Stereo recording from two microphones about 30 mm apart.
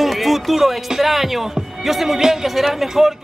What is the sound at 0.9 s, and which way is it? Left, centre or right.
Speech, centre.